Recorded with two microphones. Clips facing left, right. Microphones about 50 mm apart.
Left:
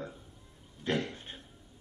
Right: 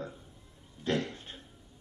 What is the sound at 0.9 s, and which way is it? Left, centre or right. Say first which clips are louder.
Speech: right 1 dB; left.